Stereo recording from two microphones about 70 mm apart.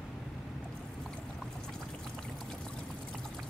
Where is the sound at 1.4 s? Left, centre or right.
Centre.